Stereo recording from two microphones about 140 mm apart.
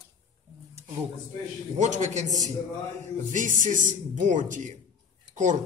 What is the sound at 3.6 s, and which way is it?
Speech, 65° right (ahead or behind).